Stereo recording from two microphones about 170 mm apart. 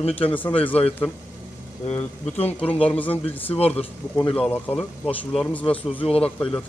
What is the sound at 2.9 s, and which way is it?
Speech, 10° left (ahead or behind).